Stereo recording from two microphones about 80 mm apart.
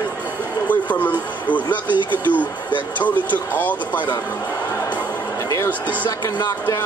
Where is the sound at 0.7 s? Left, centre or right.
Centre.